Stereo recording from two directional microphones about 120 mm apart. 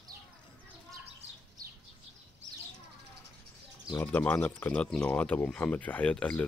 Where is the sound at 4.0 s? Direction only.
15° left (ahead or behind).